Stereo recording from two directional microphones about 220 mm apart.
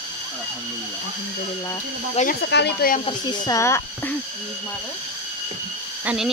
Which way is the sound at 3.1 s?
20° left (ahead or behind).